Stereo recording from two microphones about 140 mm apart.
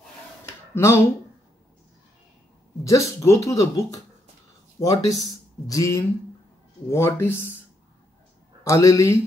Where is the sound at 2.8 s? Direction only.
20° left (ahead or behind).